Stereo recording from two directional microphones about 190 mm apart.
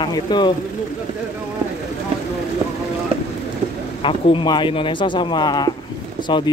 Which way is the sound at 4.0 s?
25° left (ahead or behind).